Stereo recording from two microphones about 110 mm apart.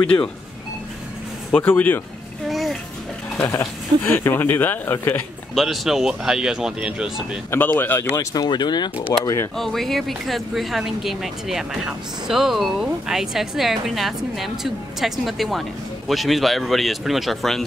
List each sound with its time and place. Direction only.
0.0 s speech: 10° left (ahead or behind)
1.5 s speech: 15° left (ahead or behind)
2.4 s music: centre (ahead or behind)
3.4 s speech: 25° left (ahead or behind)
5.5 s speech: centre (ahead or behind)
7.5 s speech: 20° left (ahead or behind)
8.2 s speech: 35° left (ahead or behind)
9.2 s speech: 30° left (ahead or behind)
9.6 s speech: centre (ahead or behind)